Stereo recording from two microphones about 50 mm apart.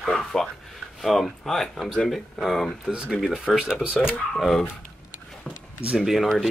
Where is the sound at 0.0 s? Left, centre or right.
Centre.